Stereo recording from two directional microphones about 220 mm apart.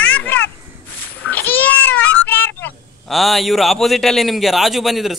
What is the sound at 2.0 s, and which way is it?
Speech, 5° left (ahead or behind).